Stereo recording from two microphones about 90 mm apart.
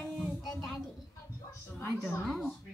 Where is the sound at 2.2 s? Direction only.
Centre (ahead or behind).